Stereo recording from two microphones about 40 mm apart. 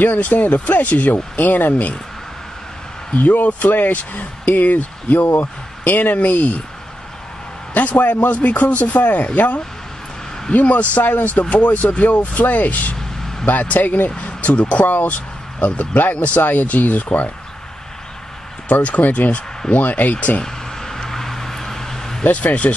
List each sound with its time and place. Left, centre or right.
0.0 s speech: left
1.7 s a man's voice: left
3.2 s speech: left
6.1 s a man's voice: left
7.7 s a man's voice: left
11.4 s a man's voice: left
18.7 s a man's voice: left
20.4 s vehicle: centre
22.2 s a man's voice: left